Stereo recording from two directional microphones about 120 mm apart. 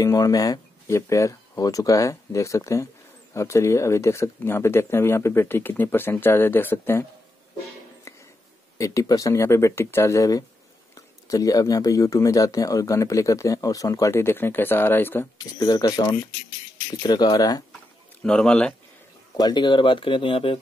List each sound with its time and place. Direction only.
0.0 s speech: 30° left (ahead or behind)
8.7 s speech: 25° left (ahead or behind)
15.3 s speech: 35° left (ahead or behind)
18.2 s a man's voice: 5° left (ahead or behind)
19.3 s speech: 35° left (ahead or behind)